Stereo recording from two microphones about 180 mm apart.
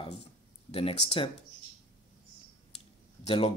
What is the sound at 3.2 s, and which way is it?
Speech, 30° left (ahead or behind).